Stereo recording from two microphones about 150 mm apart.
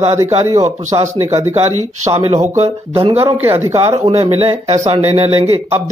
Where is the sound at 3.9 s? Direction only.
40° right (ahead or behind).